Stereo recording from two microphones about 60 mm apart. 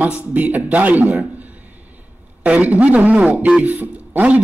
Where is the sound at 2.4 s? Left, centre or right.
Right.